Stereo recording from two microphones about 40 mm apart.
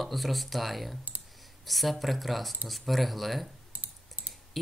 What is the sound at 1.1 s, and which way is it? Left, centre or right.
Clicking, right.